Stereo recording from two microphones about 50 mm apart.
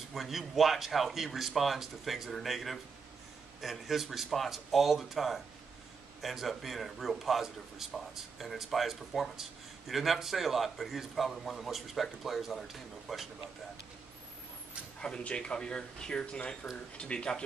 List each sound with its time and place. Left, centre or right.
0.0 s a man's voice: centre
15.0 s speech: centre